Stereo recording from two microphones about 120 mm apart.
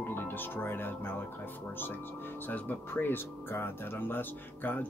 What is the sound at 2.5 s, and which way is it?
Speech, 15° left (ahead or behind).